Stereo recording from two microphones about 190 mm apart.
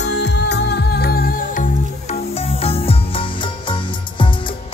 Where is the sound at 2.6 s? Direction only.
30° left (ahead or behind).